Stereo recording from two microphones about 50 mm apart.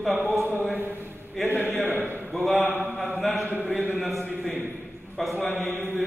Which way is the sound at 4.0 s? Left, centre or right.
Centre.